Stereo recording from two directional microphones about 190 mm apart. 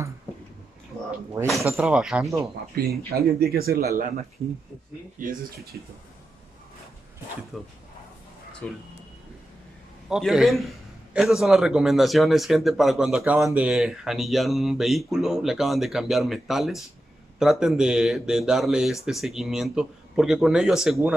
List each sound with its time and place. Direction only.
1.4 s speech: 15° right (ahead or behind)
1.8 s speech: 5° right (ahead or behind)
3.1 s speech: 55° right (ahead or behind)
5.2 s speech: 50° right (ahead or behind)
7.5 s speech: centre (ahead or behind)
10.0 s speech: 5° right (ahead or behind)